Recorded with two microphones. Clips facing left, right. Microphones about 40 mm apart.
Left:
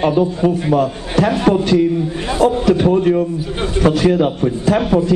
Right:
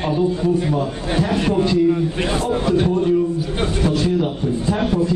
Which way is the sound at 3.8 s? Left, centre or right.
Left.